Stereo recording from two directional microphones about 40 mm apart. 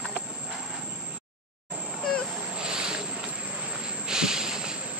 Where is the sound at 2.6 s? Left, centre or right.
Centre.